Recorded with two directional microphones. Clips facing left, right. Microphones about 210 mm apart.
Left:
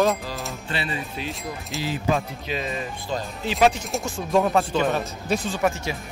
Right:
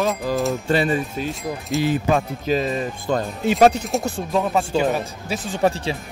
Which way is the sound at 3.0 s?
55° right (ahead or behind).